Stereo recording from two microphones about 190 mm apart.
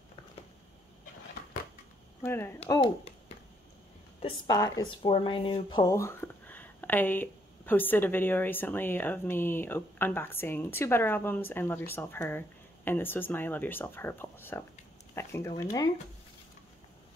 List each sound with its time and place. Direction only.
2.2 s speech: 10° left (ahead or behind)
2.7 s a woman's voice: 30° left (ahead or behind)
4.2 s a woman's voice: 20° left (ahead or behind)